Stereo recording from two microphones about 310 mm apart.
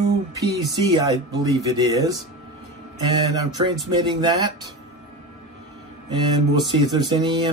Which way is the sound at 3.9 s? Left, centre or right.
Centre.